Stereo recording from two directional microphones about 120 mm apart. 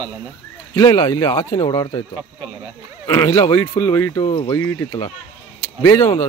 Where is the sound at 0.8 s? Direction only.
30° left (ahead or behind).